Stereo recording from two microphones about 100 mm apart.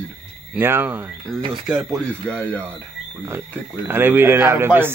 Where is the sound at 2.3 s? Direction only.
10° left (ahead or behind).